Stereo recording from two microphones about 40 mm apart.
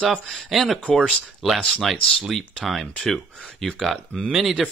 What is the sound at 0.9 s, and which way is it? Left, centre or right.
Speech, centre.